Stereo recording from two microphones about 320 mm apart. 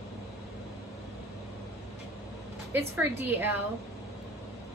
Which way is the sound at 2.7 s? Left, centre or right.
Centre.